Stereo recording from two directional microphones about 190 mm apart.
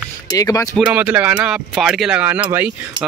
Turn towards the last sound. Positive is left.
turn(degrees=-10)  # may be behind; listen again after turning